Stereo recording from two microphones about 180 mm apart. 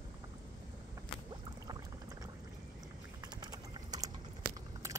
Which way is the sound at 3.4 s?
20° right (ahead or behind).